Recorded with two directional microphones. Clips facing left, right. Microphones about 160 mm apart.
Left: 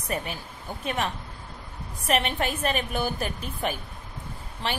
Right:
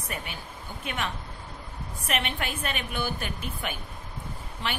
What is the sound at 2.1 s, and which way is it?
A woman's voice, 35° left (ahead or behind).